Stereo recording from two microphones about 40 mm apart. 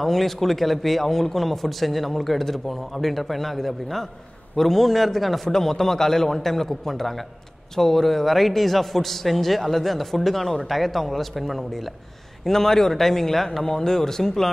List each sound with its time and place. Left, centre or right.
0.0 s a man's voice: centre